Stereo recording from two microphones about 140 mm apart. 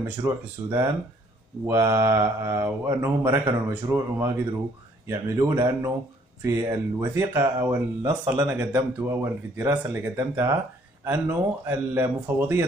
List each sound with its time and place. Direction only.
0.0 s speech: 15° right (ahead or behind)